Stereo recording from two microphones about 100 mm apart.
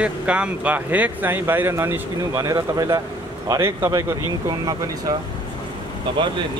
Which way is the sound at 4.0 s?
40° right (ahead or behind).